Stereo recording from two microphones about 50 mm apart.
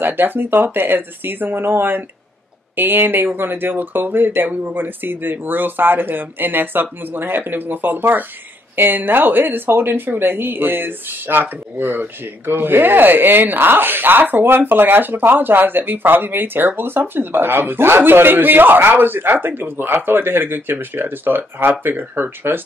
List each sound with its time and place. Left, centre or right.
0.0 s speech: right